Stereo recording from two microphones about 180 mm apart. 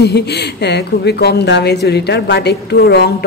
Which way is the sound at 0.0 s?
65° left (ahead or behind).